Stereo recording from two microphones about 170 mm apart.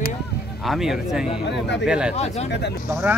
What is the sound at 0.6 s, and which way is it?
Speech, centre (ahead or behind).